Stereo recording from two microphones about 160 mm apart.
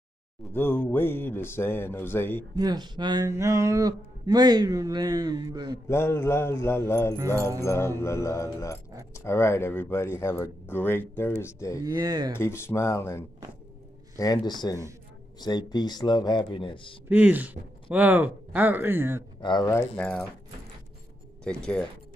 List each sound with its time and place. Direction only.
0.5 s speech: 15° left (ahead or behind)
2.5 s speech: 25° right (ahead or behind)
5.9 s speech: 15° left (ahead or behind)
11.8 s speech: 25° right (ahead or behind)
12.4 s speech: 15° left (ahead or behind); by 16.9 s 30° left (ahead or behind)
17.1 s speech: 10° right (ahead or behind)
19.4 s speech: 25° left (ahead or behind)
19.7 s speech: 15° left (ahead or behind)
21.5 s speech: 5° left (ahead or behind)